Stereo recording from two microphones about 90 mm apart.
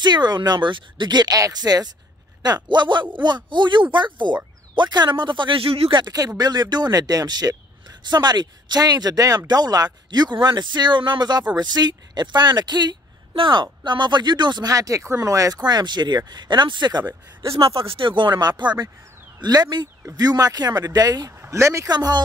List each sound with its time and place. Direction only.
0.0 s speech: 55° right (ahead or behind); by 6.0 s 80° right
6.0 s speech: 45° right (ahead or behind)
13.3 s speech: 70° right (ahead or behind)
14.7 s speech: 40° right (ahead or behind)
15.6 s speech: 55° right (ahead or behind)
17.6 s speech: 90° right; by 21.8 s 35° right (ahead or behind)
21.8 s speech: 50° right (ahead or behind)